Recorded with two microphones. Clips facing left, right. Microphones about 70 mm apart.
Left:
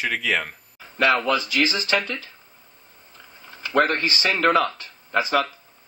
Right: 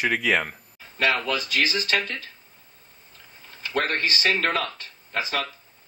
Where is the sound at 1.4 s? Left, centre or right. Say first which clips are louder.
Left 2 dB; left.